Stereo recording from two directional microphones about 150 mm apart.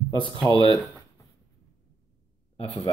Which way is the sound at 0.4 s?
25° right (ahead or behind).